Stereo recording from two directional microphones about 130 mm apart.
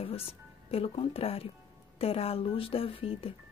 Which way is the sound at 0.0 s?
50° left (ahead or behind).